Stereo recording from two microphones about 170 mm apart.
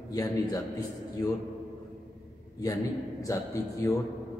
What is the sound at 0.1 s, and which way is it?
Speech, 20° left (ahead or behind).